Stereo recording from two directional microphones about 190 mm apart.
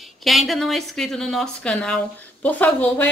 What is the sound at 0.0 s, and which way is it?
Speech, centre (ahead or behind).